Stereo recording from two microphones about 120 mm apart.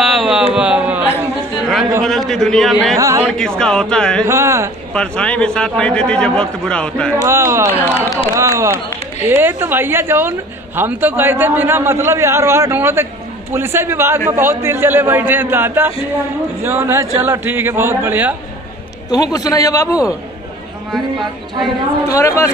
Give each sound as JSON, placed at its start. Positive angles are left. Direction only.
{"t": 0.0, "sound": "a sound", "side_deg": -5}
{"t": 1.6, "sound": "chatter", "side_deg": 0}
{"t": 2.0, "sound": "speech", "side_deg": 5}
{"t": 4.2, "sound": "a man's voice", "side_deg": -25}
{"t": 4.9, "sound": "a man's voice", "side_deg": 10}
{"t": 7.2, "sound": "a man's voice", "side_deg": -20}
{"t": 7.7, "sound": "a man's voice", "side_deg": 20}
{"t": 8.4, "sound": "a man's voice", "side_deg": -25}
{"t": 19.3, "sound": "a man's voice", "side_deg": 30}
{"t": 22.0, "sound": "a man's voice", "side_deg": 25}